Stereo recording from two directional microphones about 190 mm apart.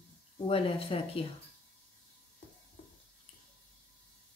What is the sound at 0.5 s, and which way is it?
Speech, 30° left (ahead or behind).